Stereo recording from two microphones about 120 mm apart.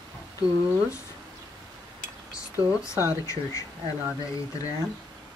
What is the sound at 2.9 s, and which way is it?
Speech, 25° left (ahead or behind).